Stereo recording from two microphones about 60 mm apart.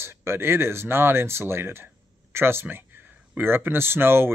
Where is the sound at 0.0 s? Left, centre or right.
Right.